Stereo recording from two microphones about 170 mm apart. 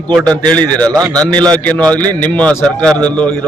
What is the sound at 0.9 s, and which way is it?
Speech, 20° right (ahead or behind).